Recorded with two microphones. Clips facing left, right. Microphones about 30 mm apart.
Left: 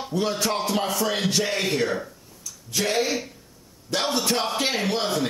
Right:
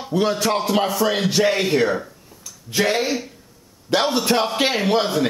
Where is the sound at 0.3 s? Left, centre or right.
Centre.